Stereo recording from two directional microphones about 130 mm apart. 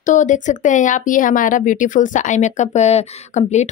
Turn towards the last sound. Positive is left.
turn(degrees=60)  # may be behind; listen again after turning